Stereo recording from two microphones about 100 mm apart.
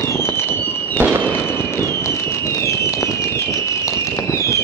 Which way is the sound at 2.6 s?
30° left (ahead or behind).